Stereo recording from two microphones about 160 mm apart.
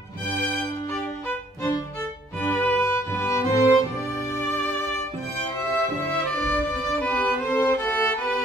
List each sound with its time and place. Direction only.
2.4 s music: 10° left (ahead or behind)
6.3 s music: 10° left (ahead or behind)